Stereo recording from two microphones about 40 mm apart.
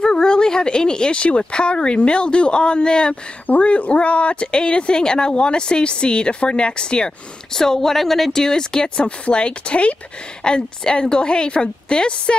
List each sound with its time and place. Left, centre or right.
0.0 s a sound: left
1.4 s speech: left
3.4 s speech: left
7.5 s speech: centre